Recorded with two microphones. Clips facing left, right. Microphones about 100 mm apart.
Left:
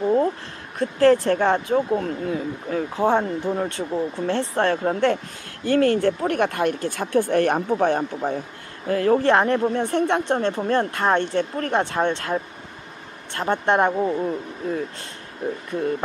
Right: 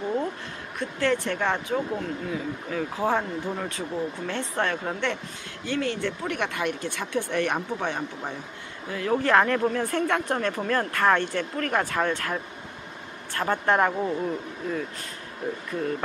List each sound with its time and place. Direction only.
0.7 s speech: 35° left (ahead or behind)
9.2 s speech: 25° left (ahead or behind)
13.4 s speech: 25° left (ahead or behind)